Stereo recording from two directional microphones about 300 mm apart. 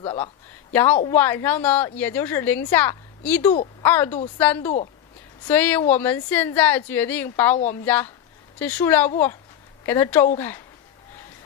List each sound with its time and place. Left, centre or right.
0.0 s speech: centre
1.1 s a woman's voice: centre